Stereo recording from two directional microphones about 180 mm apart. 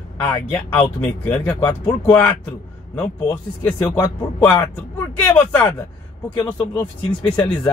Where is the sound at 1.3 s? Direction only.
20° left (ahead or behind).